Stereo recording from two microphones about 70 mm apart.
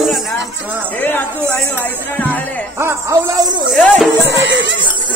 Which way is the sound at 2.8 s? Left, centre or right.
Right.